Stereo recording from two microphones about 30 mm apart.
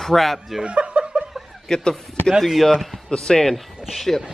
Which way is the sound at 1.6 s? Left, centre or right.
Left.